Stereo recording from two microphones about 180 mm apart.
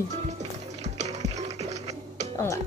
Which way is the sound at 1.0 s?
40° right (ahead or behind).